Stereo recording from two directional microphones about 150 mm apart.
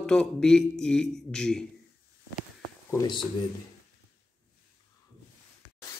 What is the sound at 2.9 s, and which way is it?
Speech, 30° left (ahead or behind).